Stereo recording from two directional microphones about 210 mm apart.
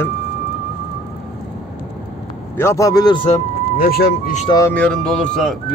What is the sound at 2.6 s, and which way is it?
Speech, 15° left (ahead or behind).